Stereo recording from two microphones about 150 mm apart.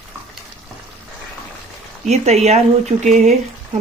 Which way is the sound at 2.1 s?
45° right (ahead or behind).